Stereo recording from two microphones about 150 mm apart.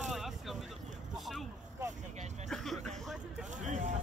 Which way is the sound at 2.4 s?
Centre (ahead or behind).